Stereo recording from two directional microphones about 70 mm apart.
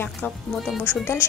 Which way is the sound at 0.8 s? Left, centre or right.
Left.